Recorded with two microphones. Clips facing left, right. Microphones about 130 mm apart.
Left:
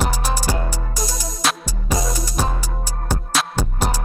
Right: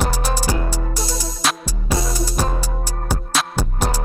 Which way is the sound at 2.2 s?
10° left (ahead or behind).